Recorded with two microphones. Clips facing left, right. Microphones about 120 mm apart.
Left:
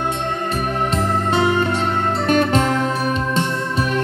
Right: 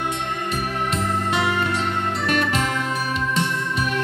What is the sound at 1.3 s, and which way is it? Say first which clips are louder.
Music: left 6 dB; 30° left (ahead or behind).